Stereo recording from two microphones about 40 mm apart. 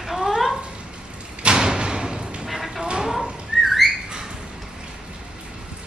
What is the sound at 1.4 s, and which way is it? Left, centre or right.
Slam, centre.